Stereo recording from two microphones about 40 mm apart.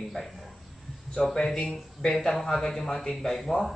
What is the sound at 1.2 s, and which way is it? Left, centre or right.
A man's voice, centre.